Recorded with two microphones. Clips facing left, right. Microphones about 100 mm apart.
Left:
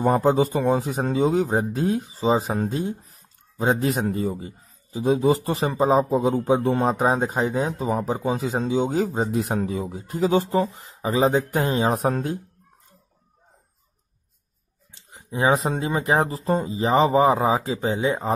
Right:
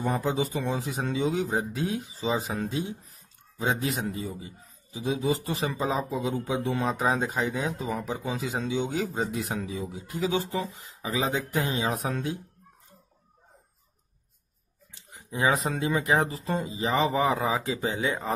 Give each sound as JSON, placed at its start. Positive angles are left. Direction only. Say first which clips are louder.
{"t": 0.0, "sound": "speech", "louder": "left 8 dB", "side_deg": 45}
{"t": 14.9, "sound": "speech", "louder": "left 4 dB", "side_deg": 25}